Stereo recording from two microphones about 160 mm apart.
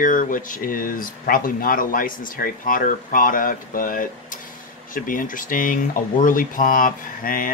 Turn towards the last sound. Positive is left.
turn(degrees=60)  # may be behind; listen again after turning